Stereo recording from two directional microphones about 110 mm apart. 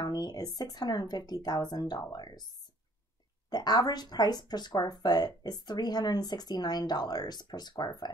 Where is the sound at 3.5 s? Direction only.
40° left (ahead or behind).